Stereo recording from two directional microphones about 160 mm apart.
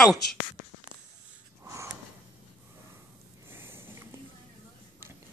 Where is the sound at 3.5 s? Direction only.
15° right (ahead or behind).